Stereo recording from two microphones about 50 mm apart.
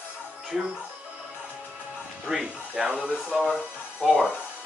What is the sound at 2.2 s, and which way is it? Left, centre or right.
Speech, centre.